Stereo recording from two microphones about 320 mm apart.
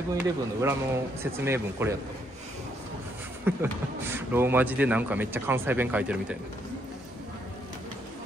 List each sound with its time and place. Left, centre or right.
0.1 s speech: centre
3.5 s speech: centre